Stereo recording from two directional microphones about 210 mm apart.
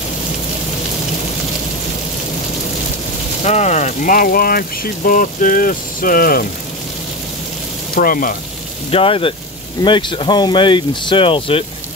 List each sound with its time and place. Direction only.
3.4 s speech: 35° left (ahead or behind)
7.9 s speech: 45° left (ahead or behind)
8.9 s speech: 25° left (ahead or behind)